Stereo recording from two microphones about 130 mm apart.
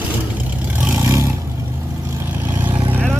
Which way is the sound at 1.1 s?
20° right (ahead or behind).